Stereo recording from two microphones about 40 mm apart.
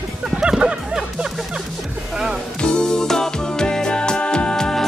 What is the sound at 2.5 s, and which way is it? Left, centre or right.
Music, left.